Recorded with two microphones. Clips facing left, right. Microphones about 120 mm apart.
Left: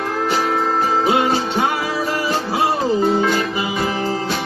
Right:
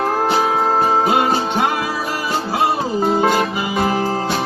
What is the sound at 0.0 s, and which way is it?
Music, 35° right (ahead or behind).